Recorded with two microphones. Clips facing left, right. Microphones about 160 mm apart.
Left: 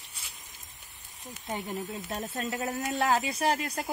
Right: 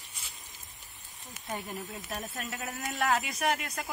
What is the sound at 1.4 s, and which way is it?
Speech, 25° left (ahead or behind).